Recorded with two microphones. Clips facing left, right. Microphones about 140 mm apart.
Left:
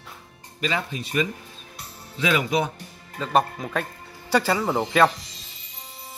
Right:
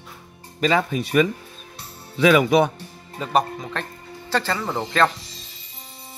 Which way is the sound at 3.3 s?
5° left (ahead or behind).